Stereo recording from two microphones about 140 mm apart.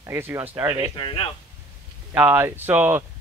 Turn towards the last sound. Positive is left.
turn(degrees=-15)  # may be behind; listen again after turning